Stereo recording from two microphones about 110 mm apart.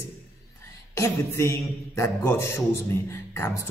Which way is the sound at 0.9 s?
25° left (ahead or behind).